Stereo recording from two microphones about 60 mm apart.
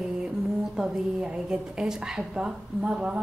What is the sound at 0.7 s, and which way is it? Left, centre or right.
A woman's voice, centre.